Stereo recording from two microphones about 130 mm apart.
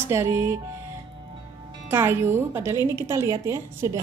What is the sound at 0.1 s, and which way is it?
Speech, 20° right (ahead or behind).